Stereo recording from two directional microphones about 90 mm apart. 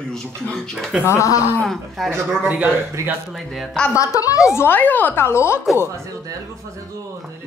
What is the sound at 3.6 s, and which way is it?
Speech, 5° left (ahead or behind).